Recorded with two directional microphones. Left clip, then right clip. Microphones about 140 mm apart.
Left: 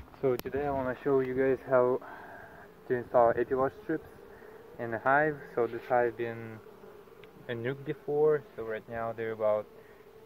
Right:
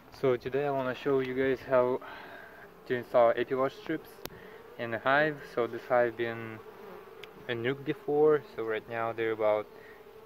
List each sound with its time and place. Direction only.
0.2 s speech: 50° right (ahead or behind)
0.7 s speech: 10° right (ahead or behind)
6.1 s speech: 35° right (ahead or behind)